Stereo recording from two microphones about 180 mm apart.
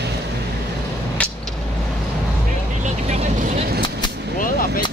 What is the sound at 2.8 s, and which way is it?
Vehicle, 40° right (ahead or behind).